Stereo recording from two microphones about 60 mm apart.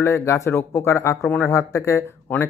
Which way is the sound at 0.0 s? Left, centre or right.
Left.